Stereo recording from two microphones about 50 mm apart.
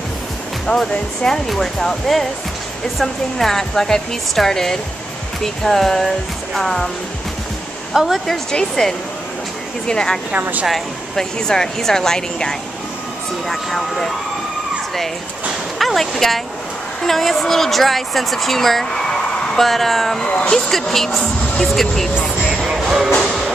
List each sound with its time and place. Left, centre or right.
0.7 s speech: centre
7.9 s speech: centre
8.5 s speech: centre
15.8 s a woman's voice: centre
19.6 s speech: centre
20.2 s speech: left
20.5 s speech: centre
22.8 s music: centre